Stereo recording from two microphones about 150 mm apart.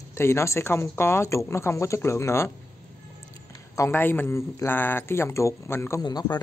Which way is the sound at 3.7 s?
15° left (ahead or behind).